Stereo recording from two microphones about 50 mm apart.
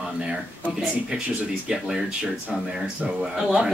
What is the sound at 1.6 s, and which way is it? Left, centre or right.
Speech, centre.